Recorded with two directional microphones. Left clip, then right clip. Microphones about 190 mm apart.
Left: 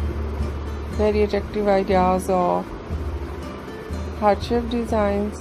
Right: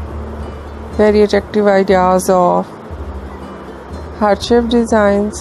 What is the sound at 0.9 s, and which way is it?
Speech, 40° right (ahead or behind).